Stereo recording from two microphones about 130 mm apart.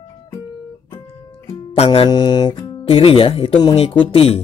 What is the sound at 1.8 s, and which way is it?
Speech, 40° left (ahead or behind).